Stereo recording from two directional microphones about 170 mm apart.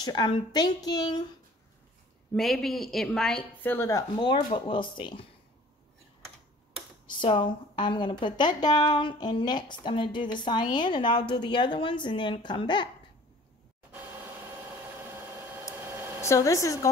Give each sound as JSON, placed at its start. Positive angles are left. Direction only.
{"t": 0.0, "sound": "a woman's voice", "side_deg": 25}
{"t": 2.3, "sound": "a woman's voice", "side_deg": 0}
{"t": 7.2, "sound": "a woman's voice", "side_deg": 30}
{"t": 14.8, "sound": "vehicle", "side_deg": -15}
{"t": 15.7, "sound": "a sound", "side_deg": -15}
{"t": 16.2, "sound": "a woman's voice", "side_deg": 15}